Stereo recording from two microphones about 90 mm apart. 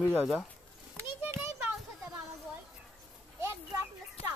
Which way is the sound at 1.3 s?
25° right (ahead or behind).